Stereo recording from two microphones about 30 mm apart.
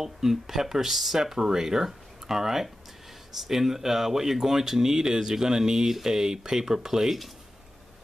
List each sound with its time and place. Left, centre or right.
0.0 s speech: centre